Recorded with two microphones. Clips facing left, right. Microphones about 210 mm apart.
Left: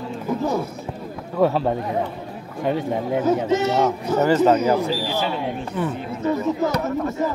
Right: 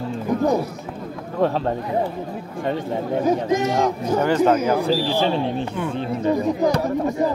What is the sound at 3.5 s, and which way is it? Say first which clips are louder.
Speech: even; 15° right (ahead or behind).